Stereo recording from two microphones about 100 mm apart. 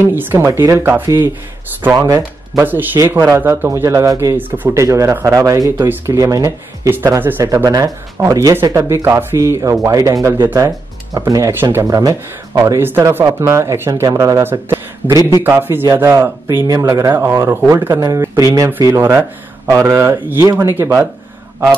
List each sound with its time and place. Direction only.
0.0 s speech: 20° right (ahead or behind)
0.5 s speech: 35° right (ahead or behind)
2.0 s speech: 40° right (ahead or behind)
2.6 s speech: 20° right (ahead or behind)
4.4 s speech: 20° right (ahead or behind)
5.8 s speech: 20° right (ahead or behind)
6.1 s speech: 35° right (ahead or behind)
7.2 s speech: 20° right (ahead or behind)
7.4 s speech: 35° right (ahead or behind)
14.5 s speech: 20° right (ahead or behind)